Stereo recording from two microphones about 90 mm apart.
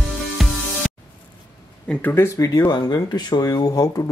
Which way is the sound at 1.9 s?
10° left (ahead or behind).